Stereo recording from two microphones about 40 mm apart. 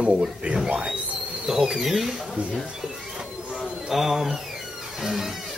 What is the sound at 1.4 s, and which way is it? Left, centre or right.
Speech, centre.